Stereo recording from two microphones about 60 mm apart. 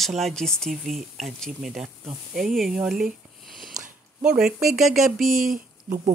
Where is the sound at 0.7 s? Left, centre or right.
Centre.